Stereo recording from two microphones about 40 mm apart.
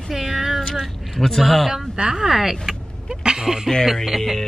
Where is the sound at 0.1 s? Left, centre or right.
Centre.